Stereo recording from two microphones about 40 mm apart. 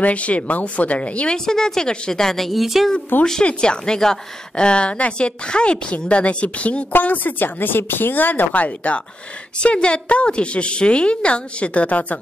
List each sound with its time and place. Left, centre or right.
0.0 s speech: left
1.3 s a woman's voice: centre
2.6 s speech: centre
3.1 s speech: left
3.4 s a woman's voice: left
6.9 s speech: left
8.6 s a woman's voice: left